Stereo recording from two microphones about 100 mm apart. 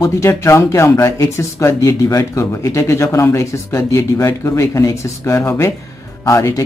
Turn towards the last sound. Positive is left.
turn(degrees=30)  # may be behind; listen again after turning